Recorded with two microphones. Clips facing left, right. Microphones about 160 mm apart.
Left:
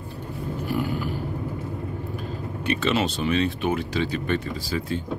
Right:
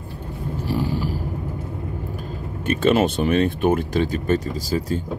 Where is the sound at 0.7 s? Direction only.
30° right (ahead or behind).